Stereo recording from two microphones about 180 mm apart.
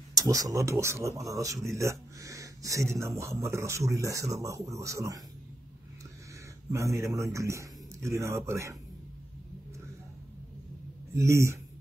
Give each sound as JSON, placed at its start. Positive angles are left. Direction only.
{"t": 0.1, "sound": "speech", "side_deg": -20}
{"t": 6.7, "sound": "speech", "side_deg": -15}
{"t": 11.1, "sound": "speech", "side_deg": -15}